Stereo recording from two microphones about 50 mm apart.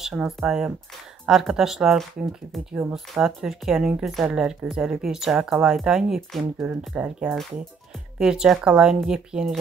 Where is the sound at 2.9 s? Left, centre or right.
Centre.